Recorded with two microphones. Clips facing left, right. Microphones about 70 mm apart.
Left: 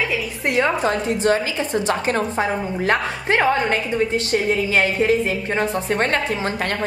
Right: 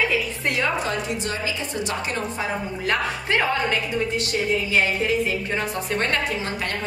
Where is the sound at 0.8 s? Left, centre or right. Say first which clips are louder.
Left 8 dB; left.